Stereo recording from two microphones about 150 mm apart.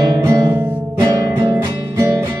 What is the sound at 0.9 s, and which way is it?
Music, 25° right (ahead or behind).